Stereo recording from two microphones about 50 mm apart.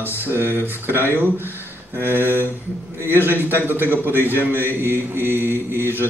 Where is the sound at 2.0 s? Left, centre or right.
Right.